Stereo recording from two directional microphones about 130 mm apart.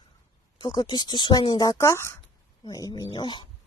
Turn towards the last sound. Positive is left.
turn(degrees=35)  # may be behind; listen again after turning